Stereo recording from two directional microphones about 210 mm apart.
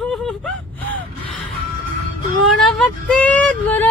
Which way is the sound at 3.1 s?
5° left (ahead or behind).